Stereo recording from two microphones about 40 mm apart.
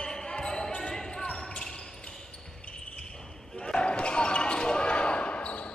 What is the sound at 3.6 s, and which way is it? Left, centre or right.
Basketball bounce, left.